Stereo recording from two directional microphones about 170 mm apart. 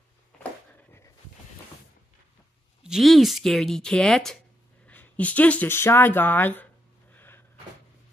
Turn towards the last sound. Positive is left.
turn(degrees=10)  # may be behind; listen again after turning